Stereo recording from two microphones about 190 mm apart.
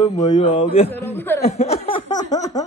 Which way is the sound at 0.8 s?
10° left (ahead or behind).